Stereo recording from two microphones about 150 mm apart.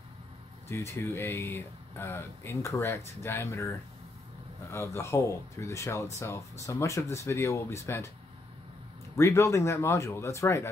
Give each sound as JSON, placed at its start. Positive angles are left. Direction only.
{"t": 0.7, "sound": "speech", "side_deg": 15}
{"t": 9.1, "sound": "speech", "side_deg": 20}